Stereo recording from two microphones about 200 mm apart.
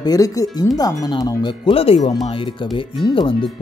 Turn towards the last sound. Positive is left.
turn(degrees=25)  # may be behind; listen again after turning